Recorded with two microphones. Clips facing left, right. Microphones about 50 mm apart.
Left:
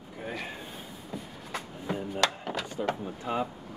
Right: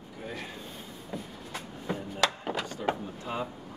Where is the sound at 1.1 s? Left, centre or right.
Centre.